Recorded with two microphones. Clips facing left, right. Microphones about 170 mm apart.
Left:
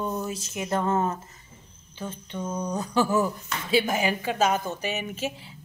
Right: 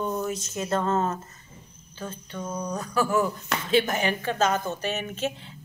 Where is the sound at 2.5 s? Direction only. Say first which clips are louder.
Left 2 dB; 25° left (ahead or behind).